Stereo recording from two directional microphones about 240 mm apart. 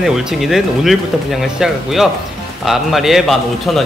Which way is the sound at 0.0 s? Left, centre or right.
Centre.